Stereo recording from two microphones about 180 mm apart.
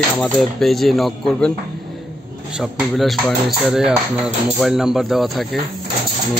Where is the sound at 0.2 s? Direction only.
Centre (ahead or behind).